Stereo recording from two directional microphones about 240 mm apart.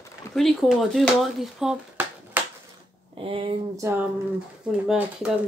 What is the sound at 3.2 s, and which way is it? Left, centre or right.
Speech, right.